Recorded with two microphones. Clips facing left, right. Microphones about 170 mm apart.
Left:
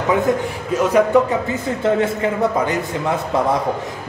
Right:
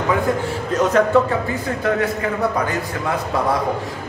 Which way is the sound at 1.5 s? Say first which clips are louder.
Left 2 dB; 25° left (ahead or behind).